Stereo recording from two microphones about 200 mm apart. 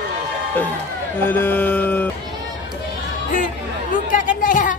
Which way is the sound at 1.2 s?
10° left (ahead or behind).